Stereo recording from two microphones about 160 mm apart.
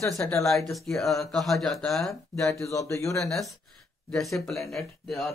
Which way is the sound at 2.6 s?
20° left (ahead or behind).